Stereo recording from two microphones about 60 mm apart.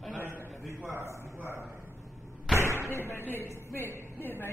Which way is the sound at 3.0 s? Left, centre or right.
Left.